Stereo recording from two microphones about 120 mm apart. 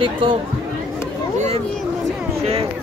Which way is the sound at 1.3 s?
60° right (ahead or behind).